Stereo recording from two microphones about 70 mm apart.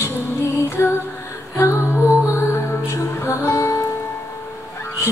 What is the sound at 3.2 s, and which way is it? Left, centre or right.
Music, left.